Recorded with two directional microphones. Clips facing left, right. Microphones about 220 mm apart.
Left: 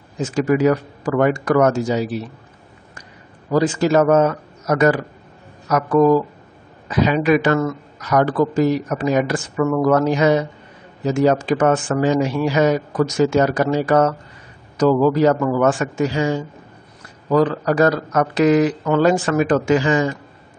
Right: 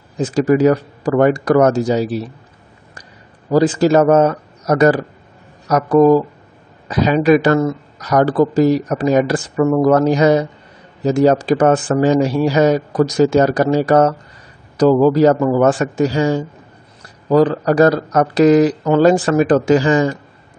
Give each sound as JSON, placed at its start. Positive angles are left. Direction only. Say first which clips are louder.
{"t": 0.2, "sound": "speech", "louder": "right 4 dB", "side_deg": -35}
{"t": 3.5, "sound": "speech", "louder": "right 4 dB", "side_deg": -35}